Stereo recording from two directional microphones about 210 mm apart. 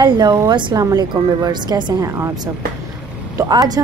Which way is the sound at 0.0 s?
20° right (ahead or behind).